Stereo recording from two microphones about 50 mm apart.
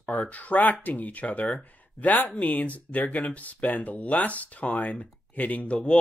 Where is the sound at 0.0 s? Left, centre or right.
Left.